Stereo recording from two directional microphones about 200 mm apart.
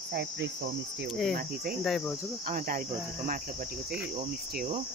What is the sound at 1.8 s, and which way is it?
Cricket, centre (ahead or behind).